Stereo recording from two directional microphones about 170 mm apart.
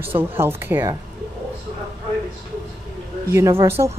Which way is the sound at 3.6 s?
15° right (ahead or behind).